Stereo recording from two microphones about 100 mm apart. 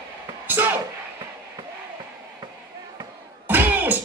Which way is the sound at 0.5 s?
20° right (ahead or behind).